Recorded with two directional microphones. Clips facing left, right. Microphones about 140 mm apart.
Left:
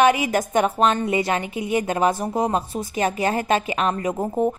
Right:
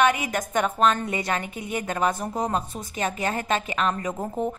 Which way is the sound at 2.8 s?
35° left (ahead or behind).